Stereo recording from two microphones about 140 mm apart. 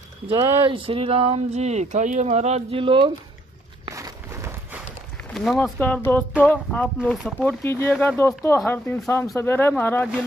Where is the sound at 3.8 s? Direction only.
25° right (ahead or behind).